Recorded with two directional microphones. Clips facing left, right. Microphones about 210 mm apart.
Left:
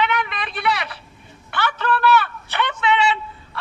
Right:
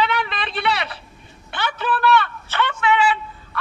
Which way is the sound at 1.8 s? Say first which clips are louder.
Even; centre (ahead or behind).